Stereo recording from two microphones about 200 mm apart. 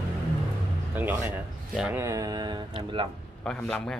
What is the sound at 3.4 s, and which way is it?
Speech, 5° left (ahead or behind).